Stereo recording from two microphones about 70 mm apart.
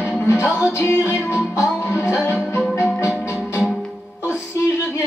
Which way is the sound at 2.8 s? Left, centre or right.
Left.